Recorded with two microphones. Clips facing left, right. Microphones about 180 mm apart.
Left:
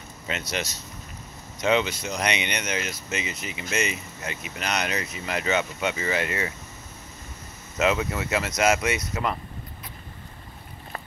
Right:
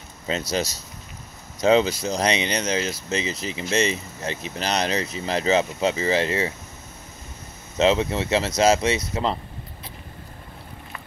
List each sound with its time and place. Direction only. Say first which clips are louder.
0.3 s speech: right 6 dB; 35° right (ahead or behind)
7.7 s speech: right 4 dB; 25° right (ahead or behind)